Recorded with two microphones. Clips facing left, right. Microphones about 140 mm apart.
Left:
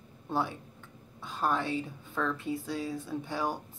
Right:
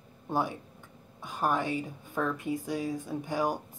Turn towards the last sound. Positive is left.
turn(degrees=-15)  # may be behind; listen again after turning